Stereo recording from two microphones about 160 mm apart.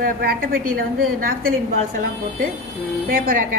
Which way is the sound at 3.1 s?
60° right (ahead or behind).